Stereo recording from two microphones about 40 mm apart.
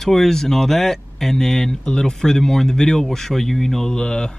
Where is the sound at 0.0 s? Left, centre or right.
Centre.